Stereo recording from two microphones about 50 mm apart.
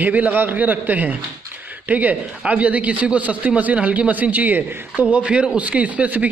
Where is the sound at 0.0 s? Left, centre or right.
Right.